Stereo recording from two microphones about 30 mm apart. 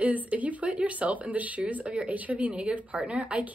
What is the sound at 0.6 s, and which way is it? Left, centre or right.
A woman's voice, right.